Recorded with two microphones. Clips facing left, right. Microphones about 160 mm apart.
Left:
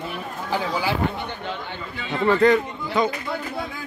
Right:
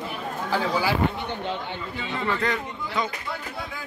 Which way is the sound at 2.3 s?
45° left (ahead or behind).